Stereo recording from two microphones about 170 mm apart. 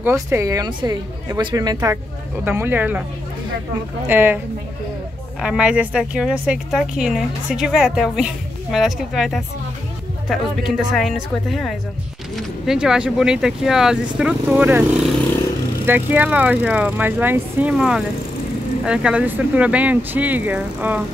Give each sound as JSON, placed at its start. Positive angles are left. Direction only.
{"t": 0.0, "sound": "a woman's voice", "side_deg": -15}
{"t": 4.1, "sound": "speech", "side_deg": -10}
{"t": 5.4, "sound": "a woman's voice", "side_deg": -5}